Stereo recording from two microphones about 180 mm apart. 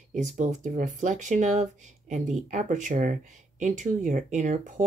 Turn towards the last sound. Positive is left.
turn(degrees=-45)  # may be behind; listen again after turning